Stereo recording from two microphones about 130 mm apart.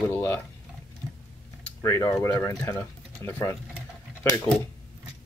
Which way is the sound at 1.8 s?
25° left (ahead or behind).